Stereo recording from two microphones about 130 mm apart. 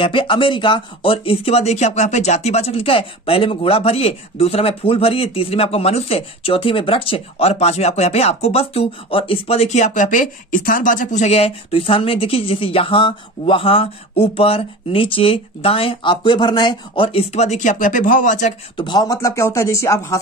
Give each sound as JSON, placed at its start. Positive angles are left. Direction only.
{"t": 0.0, "sound": "speech", "side_deg": 40}
{"t": 18.8, "sound": "speech", "side_deg": 35}